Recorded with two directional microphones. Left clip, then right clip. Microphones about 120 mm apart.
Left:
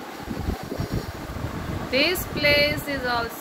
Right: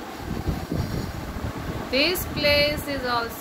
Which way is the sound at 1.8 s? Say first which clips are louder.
Left 1 dB; 15° right (ahead or behind).